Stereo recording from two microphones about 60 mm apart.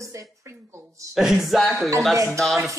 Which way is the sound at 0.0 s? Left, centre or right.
Right.